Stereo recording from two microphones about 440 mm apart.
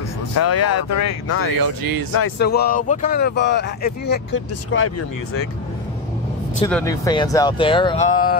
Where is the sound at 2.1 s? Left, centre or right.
Left.